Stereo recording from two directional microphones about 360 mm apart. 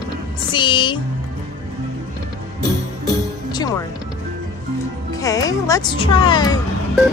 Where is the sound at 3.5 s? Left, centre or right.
Centre.